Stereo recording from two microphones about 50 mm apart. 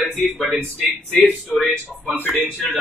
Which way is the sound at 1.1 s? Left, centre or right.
Left.